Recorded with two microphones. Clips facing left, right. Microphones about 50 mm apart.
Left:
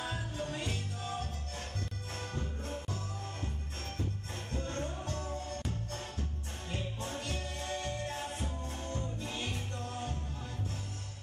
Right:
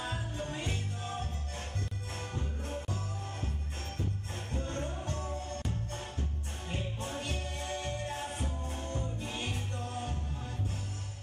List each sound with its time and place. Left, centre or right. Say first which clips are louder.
0.0 s music: even; right
2.1 s music: even; centre
4.5 s music: even; right
6.7 s music: right 1 dB; right
9.2 s music: right 1 dB; right